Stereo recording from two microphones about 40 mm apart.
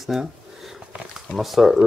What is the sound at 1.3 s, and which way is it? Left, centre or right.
Speech, centre.